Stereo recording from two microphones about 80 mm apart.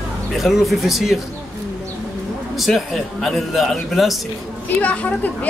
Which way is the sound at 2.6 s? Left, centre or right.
Centre.